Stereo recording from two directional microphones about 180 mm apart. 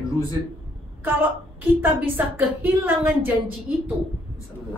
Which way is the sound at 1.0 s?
10° right (ahead or behind).